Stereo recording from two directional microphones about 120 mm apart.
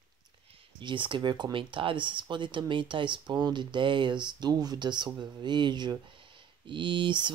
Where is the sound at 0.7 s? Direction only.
40° right (ahead or behind).